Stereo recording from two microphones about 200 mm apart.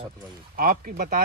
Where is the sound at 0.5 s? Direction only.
45° right (ahead or behind).